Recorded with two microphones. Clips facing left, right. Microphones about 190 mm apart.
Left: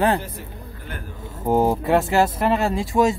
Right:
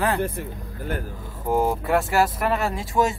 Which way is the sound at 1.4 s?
25° left (ahead or behind).